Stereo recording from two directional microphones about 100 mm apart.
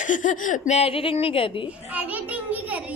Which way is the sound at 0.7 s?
80° left.